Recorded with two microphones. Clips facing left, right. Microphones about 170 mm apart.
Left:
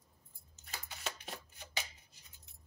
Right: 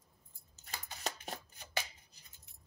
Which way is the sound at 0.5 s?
40° right (ahead or behind).